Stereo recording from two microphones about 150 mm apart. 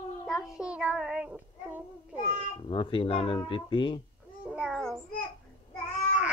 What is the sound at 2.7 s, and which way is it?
Speech, 35° left (ahead or behind).